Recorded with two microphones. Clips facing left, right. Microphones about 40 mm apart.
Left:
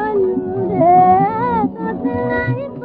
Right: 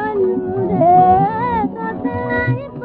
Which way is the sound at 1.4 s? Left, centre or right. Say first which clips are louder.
Left 1 dB; right.